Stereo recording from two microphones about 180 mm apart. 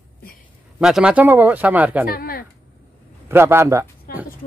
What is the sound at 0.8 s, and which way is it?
Speech, 5° right (ahead or behind).